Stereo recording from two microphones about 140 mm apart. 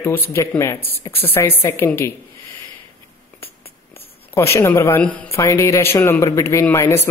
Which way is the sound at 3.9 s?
15° left (ahead or behind).